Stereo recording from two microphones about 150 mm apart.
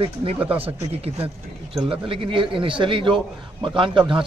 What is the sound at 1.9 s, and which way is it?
A man's voice, 35° right (ahead or behind).